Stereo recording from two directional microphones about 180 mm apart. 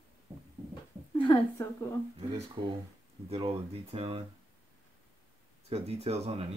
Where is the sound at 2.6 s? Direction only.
30° right (ahead or behind).